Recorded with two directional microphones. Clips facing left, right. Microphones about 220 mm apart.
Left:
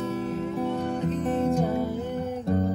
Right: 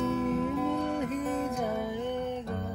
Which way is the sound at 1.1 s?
30° left (ahead or behind).